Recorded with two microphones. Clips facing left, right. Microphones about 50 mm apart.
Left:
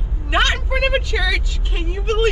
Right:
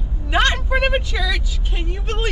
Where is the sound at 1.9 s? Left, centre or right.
Left.